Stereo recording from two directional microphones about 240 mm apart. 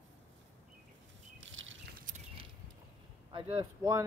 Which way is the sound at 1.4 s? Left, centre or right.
Right.